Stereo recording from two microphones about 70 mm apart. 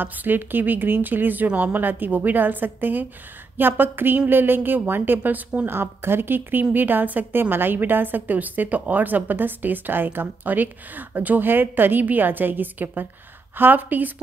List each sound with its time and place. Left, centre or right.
0.0 s speech: right
5.7 s speech: right